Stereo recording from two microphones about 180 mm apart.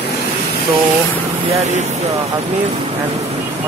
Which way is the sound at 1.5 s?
35° right (ahead or behind).